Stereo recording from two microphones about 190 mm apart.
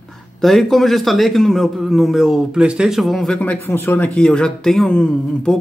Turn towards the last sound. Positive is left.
turn(degrees=5)  # may be behind; listen again after turning